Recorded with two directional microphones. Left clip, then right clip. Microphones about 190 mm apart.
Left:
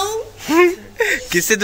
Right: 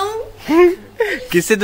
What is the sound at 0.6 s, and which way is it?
Speech, 10° right (ahead or behind).